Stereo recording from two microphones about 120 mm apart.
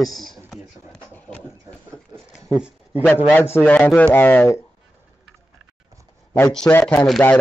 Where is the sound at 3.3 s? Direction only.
20° left (ahead or behind).